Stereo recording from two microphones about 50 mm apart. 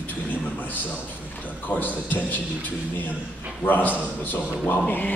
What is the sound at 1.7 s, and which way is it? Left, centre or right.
Speech, left.